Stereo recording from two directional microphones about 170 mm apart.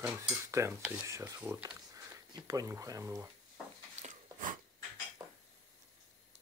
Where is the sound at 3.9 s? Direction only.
45° right (ahead or behind).